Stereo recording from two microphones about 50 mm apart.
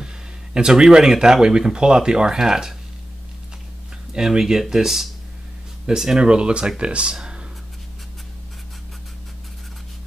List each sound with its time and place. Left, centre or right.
0.0 s speech: centre
4.1 s speech: centre